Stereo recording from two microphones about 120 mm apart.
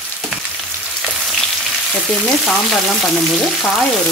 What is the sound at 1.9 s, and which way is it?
Speech, 10° left (ahead or behind).